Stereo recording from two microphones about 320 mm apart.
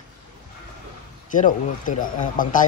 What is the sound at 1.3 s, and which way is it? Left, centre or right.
Speech, left.